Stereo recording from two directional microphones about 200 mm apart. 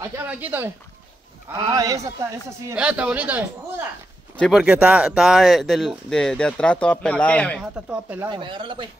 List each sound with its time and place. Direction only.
0.0 s speech: 10° right (ahead or behind)
1.5 s speech: 20° right (ahead or behind)
2.7 s speech: 5° right (ahead or behind)
7.7 s speech: 5° right (ahead or behind)
8.3 s speech: 25° right (ahead or behind)